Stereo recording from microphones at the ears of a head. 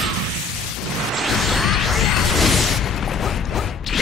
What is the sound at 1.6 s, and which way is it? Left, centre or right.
Music, left.